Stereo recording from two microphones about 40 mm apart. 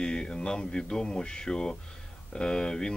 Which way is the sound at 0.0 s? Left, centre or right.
Left.